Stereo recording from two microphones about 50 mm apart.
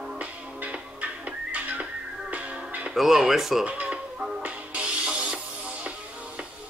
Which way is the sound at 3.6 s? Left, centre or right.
Right.